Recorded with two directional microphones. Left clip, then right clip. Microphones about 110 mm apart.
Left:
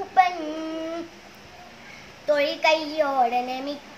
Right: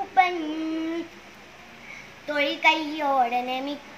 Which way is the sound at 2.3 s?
35° left (ahead or behind).